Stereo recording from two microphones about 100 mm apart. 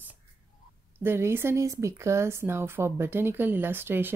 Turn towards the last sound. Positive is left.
turn(degrees=-20)  # may be behind; listen again after turning